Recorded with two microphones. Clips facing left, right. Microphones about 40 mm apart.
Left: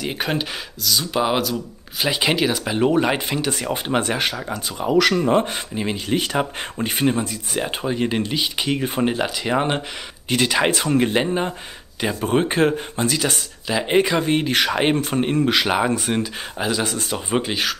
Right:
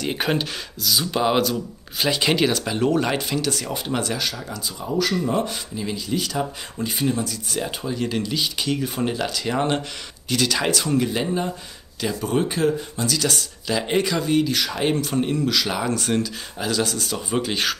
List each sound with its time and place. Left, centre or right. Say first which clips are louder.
0.0 s speech: right 1 dB; centre
2.0 s speech: even; centre; by 4.8 s left
4.8 s speech: left 6 dB; left
5.2 s speech: left 5 dB; left
7.2 s speech: left 2 dB; left
17.5 s speech: left 1 dB; centre